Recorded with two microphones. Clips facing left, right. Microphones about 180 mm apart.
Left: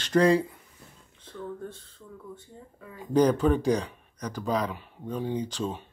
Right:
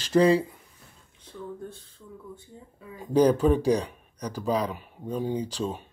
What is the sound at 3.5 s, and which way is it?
Speech, 35° right (ahead or behind).